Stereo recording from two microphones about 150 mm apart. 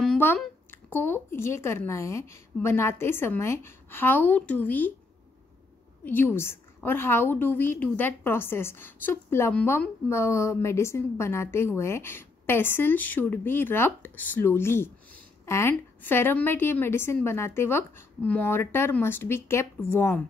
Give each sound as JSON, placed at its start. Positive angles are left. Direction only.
{"t": 0.0, "sound": "a sound", "side_deg": 10}
{"t": 0.7, "sound": "a woman's voice", "side_deg": 15}
{"t": 6.0, "sound": "a woman's voice", "side_deg": 15}